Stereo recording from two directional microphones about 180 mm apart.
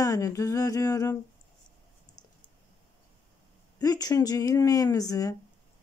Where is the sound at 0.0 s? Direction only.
20° left (ahead or behind).